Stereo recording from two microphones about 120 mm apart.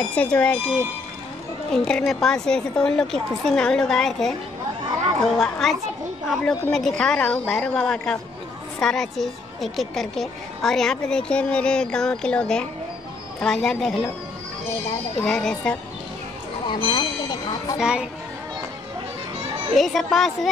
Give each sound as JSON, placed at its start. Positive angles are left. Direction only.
{"t": 0.0, "sound": "speech", "side_deg": 10}
{"t": 1.7, "sound": "a woman's voice", "side_deg": 5}
{"t": 5.4, "sound": "a woman's voice", "side_deg": 0}
{"t": 15.2, "sound": "a woman's voice", "side_deg": 5}
{"t": 16.6, "sound": "speech", "side_deg": 40}
{"t": 17.7, "sound": "a child's voice", "side_deg": -5}
{"t": 19.7, "sound": "a woman's voice", "side_deg": 0}